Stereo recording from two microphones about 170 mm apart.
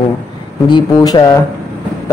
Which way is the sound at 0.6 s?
25° left (ahead or behind).